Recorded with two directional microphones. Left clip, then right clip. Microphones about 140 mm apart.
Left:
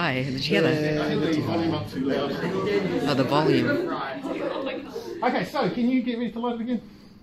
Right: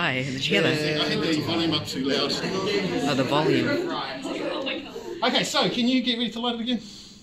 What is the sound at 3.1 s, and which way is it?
Speech, 5° left (ahead or behind).